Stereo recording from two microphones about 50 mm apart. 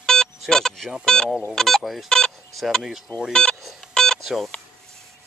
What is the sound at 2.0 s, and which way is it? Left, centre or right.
Speech, centre.